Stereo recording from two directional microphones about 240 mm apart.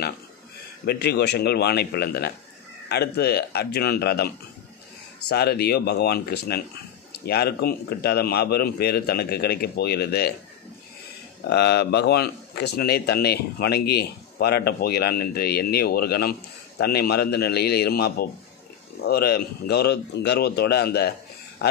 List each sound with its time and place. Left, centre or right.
0.8 s a man's voice: left
5.3 s a man's voice: left
11.4 s a man's voice: left